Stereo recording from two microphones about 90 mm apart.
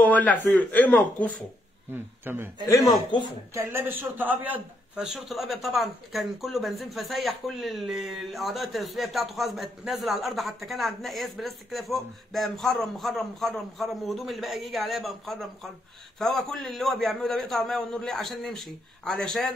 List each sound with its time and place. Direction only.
0.0 s speech: 15° left (ahead or behind)
1.9 s a man's voice: 25° right (ahead or behind)
2.6 s a man's voice: 40° left (ahead or behind)
3.5 s a man's voice: 30° right (ahead or behind)
5.0 s speech: 5° right (ahead or behind)